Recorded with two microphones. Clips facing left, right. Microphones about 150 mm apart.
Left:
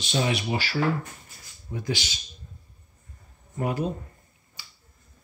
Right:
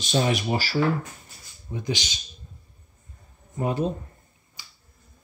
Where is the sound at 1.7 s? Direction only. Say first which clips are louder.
Right 1 dB; 20° right (ahead or behind).